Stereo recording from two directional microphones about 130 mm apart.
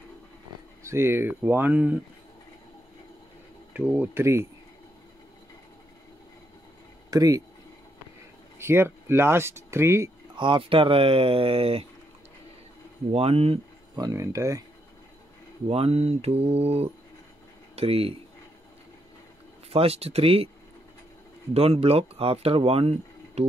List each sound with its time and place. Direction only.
0.8 s speech: 20° right (ahead or behind)
3.7 s speech: 15° right (ahead or behind)
7.1 s speech: 30° right (ahead or behind)
8.5 s speech: 20° right (ahead or behind)
10.3 s speech: 40° right (ahead or behind)
13.1 s speech: 50° right (ahead or behind)
13.9 s speech: 25° right (ahead or behind)
15.7 s speech: 50° right (ahead or behind)
19.7 s speech: 50° right (ahead or behind)
21.5 s speech: 50° right (ahead or behind)